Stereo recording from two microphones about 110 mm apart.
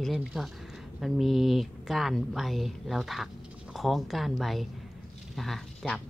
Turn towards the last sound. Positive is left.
turn(degrees=5)  # may be behind; listen again after turning